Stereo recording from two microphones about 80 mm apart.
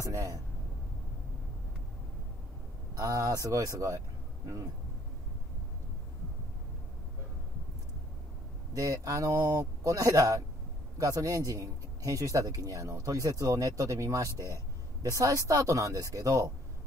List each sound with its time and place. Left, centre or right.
0.0 s speech: right
3.0 s speech: right
8.7 s speech: right